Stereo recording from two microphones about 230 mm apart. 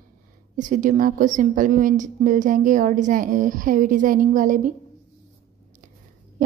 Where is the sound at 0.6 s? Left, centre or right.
Right.